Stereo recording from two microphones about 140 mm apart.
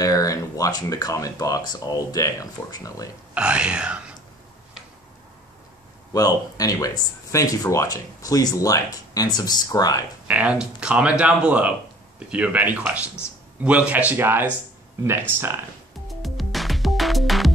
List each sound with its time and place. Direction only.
0.0 s speech: 25° left (ahead or behind)
3.3 s speech: 10° right (ahead or behind)
6.1 s speech: 25° left (ahead or behind)
10.2 s speech: 10° right (ahead or behind)
16.1 s music: centre (ahead or behind)